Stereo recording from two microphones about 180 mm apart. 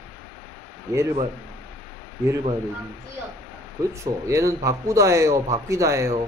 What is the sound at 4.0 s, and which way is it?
A man's voice, 15° right (ahead or behind).